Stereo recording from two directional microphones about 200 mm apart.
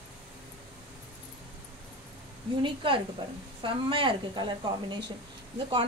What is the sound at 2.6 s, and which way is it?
A woman's voice, 25° right (ahead or behind).